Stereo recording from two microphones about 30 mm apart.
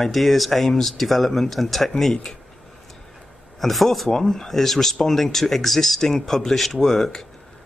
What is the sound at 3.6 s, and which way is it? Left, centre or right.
Speech, centre.